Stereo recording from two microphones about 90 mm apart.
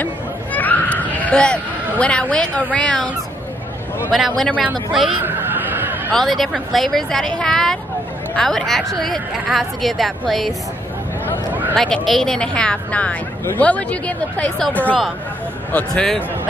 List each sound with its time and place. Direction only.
0.0 s a sound: 20° left (ahead or behind)
2.7 s speech: 10° left (ahead or behind)
4.1 s a woman's voice: centre (ahead or behind)
5.2 s a sound: 20° right (ahead or behind)
6.1 s a woman's voice: 5° left (ahead or behind)
11.7 s speech: 5° left (ahead or behind)